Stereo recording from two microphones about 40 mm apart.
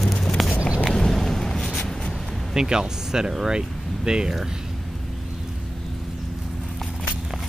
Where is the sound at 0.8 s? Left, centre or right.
Centre.